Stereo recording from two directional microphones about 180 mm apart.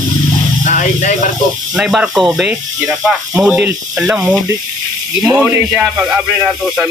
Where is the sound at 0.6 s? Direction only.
45° left (ahead or behind).